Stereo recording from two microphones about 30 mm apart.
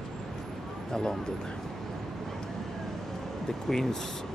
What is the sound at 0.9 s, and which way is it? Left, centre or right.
Speech, left.